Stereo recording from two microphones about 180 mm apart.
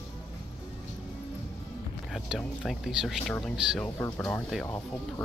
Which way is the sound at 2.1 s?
Centre (ahead or behind).